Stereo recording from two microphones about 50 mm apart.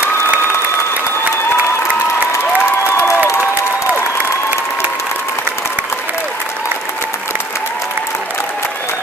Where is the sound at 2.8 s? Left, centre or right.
Left.